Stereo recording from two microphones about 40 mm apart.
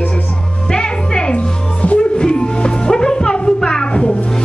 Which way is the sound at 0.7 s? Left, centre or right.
Left.